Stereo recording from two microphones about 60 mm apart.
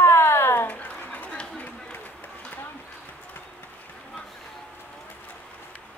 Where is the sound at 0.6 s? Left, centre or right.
Left.